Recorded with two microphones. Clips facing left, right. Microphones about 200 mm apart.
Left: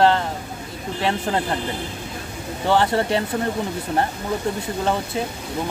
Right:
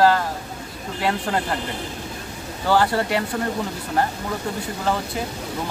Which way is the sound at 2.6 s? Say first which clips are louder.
Left 1 dB; 25° left (ahead or behind).